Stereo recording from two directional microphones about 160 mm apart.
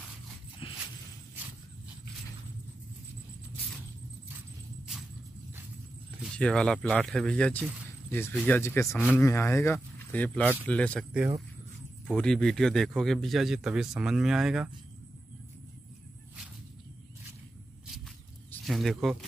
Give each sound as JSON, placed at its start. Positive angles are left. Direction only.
{"t": 0.6, "sound": "a sound", "side_deg": 30}
{"t": 6.2, "sound": "a man's voice", "side_deg": 5}
{"t": 12.1, "sound": "a man's voice", "side_deg": 5}
{"t": 18.6, "sound": "speech", "side_deg": 0}